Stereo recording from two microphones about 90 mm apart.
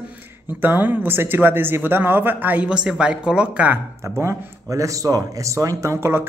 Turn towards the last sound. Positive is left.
turn(degrees=-30)  # may be behind; listen again after turning